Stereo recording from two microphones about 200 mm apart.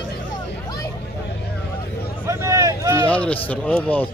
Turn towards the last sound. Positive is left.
turn(degrees=10)  # may be behind; listen again after turning